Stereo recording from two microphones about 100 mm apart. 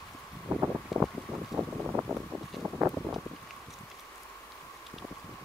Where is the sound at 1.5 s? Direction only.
10° right (ahead or behind).